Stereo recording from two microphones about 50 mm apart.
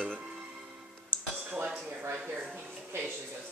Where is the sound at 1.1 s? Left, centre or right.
Right.